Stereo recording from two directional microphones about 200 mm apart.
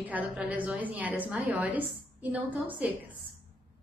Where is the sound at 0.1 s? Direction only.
5° right (ahead or behind).